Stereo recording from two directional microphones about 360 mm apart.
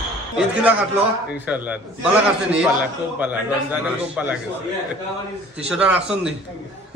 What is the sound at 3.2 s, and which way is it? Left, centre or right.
A man's voice, centre.